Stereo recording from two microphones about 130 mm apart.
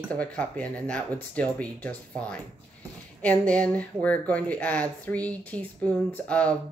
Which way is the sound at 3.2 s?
10° left (ahead or behind).